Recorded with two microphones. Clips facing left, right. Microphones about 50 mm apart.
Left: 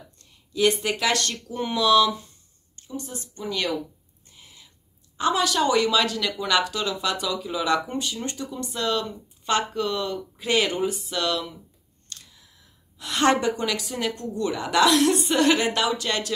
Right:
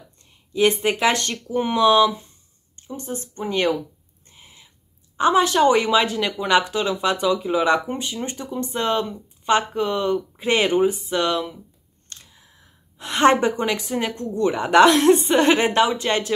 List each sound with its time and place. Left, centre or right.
0.2 s speech: right
4.3 s owl: right
5.1 s speech: right